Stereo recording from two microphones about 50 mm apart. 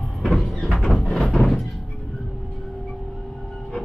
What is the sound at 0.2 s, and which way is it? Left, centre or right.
Vehicle, centre.